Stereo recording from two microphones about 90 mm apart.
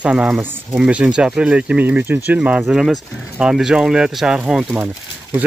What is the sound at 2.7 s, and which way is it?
Speech, centre (ahead or behind).